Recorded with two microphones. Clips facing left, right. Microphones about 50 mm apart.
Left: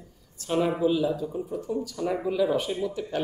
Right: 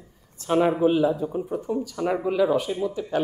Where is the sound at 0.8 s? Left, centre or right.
Right.